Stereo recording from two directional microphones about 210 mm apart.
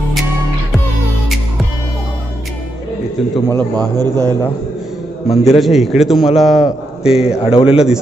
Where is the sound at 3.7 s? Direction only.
20° right (ahead or behind).